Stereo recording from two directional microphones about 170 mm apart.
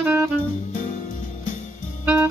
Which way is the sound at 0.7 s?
50° left (ahead or behind).